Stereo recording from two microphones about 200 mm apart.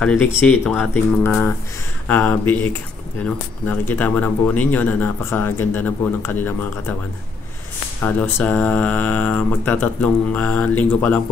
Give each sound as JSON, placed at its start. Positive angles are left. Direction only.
{"t": 0.0, "sound": "speech", "side_deg": 5}
{"t": 8.0, "sound": "speech", "side_deg": 5}